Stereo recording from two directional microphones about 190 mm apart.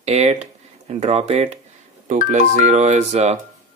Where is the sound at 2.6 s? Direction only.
40° right (ahead or behind).